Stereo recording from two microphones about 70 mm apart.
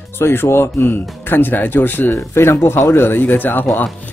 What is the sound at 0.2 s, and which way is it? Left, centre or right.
Speech, left.